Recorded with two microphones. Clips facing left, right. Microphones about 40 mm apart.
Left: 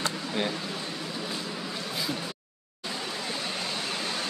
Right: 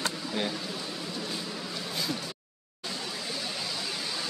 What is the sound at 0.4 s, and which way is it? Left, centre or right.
Speech, centre.